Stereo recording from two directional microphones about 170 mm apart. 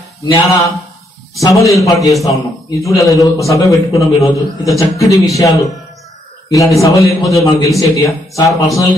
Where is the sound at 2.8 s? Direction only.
20° left (ahead or behind).